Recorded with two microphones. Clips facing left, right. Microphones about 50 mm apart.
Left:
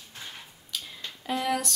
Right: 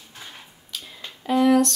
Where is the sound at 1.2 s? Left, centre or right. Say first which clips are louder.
Right 11 dB; centre.